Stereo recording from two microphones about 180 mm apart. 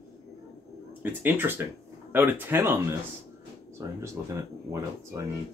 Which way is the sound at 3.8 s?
15° right (ahead or behind).